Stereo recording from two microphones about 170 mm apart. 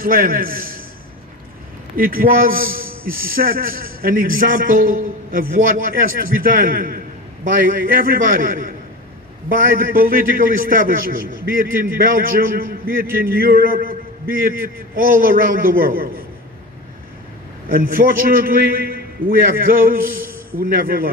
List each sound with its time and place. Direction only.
0.0 s a man's voice: 55° right (ahead or behind)
2.0 s a man's voice: 55° right (ahead or behind)
15.0 s a man's voice: 55° right (ahead or behind)
17.6 s a man's voice: 60° right (ahead or behind)